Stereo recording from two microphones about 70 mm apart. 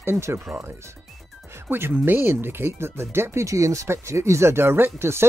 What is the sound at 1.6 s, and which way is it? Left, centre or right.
Speech, right.